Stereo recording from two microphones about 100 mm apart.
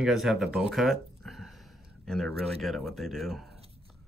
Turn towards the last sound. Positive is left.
turn(degrees=0)  # may be behind; listen again after turning